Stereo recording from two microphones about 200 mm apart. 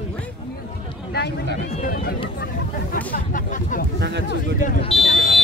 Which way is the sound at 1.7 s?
45° left (ahead or behind).